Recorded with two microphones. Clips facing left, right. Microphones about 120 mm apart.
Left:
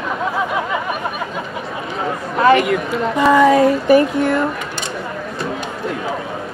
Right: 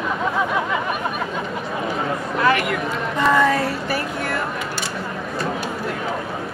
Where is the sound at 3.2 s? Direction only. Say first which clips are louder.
Left 6 dB; 10° left (ahead or behind).